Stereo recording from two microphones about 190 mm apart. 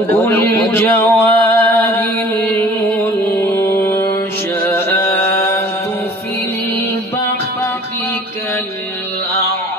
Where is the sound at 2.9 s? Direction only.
10° left (ahead or behind).